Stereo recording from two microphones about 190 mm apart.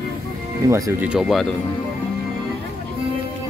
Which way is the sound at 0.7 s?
15° right (ahead or behind).